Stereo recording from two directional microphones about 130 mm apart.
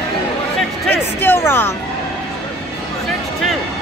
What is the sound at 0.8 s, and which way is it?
Music, 15° left (ahead or behind).